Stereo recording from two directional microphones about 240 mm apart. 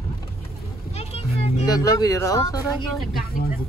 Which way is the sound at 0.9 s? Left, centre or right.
Left.